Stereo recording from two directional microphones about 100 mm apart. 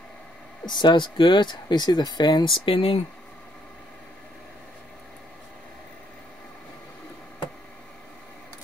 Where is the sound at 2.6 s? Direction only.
60° left (ahead or behind).